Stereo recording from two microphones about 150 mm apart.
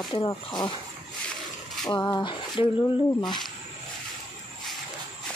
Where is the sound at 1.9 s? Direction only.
30° left (ahead or behind).